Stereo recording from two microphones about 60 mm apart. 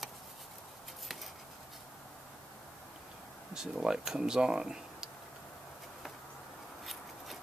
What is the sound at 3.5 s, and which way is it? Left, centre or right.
Speech, centre.